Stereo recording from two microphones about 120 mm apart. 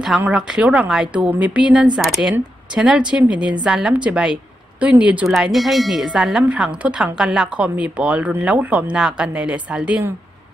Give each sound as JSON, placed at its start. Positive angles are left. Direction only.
{"t": 0.3, "sound": "a woman's voice", "side_deg": -5}